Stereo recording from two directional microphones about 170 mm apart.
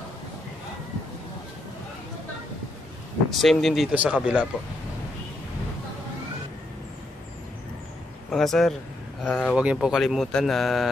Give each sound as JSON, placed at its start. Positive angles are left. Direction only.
{"t": 3.3, "sound": "speech", "side_deg": 0}
{"t": 8.3, "sound": "speech", "side_deg": 0}
{"t": 9.6, "sound": "speech", "side_deg": -5}